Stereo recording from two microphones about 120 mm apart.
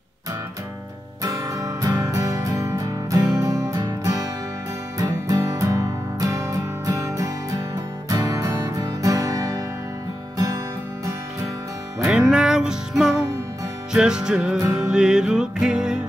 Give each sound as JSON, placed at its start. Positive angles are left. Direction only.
{"t": 1.2, "sound": "music", "side_deg": -30}
{"t": 12.1, "sound": "music", "side_deg": -5}